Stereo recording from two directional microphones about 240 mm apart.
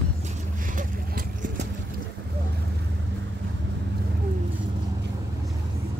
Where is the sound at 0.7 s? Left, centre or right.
Right.